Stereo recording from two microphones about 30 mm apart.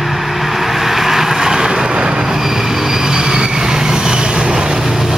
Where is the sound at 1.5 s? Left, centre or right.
Right.